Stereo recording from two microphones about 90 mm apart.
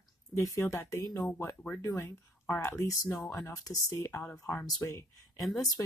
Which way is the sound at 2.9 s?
45° left (ahead or behind).